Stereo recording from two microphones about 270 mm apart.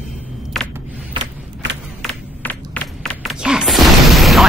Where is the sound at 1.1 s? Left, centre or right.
Centre.